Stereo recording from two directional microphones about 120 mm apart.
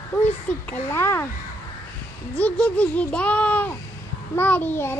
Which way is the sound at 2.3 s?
10° left (ahead or behind).